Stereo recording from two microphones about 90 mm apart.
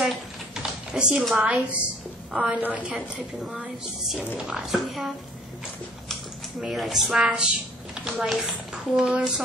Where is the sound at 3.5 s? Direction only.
5° right (ahead or behind).